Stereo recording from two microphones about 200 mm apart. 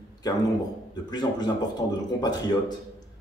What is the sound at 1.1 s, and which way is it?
Speech, 20° left (ahead or behind).